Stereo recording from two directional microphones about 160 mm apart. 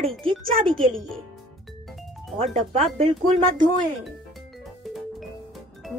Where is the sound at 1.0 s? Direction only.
Centre (ahead or behind).